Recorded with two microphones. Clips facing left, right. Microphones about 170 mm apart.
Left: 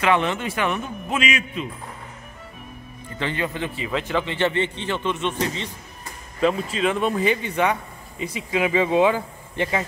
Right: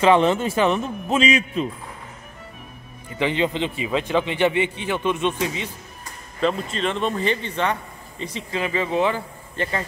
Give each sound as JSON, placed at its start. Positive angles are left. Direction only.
{"t": 0.0, "sound": "a man's voice", "side_deg": -30}
{"t": 3.2, "sound": "a man's voice", "side_deg": -20}
{"t": 6.4, "sound": "speech", "side_deg": 5}